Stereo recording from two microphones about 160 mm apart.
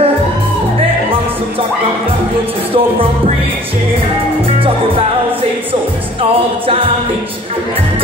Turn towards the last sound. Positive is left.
turn(degrees=-35)  # may be behind; listen again after turning